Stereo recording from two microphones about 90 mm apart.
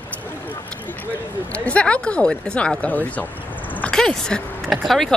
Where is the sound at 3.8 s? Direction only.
5° left (ahead or behind).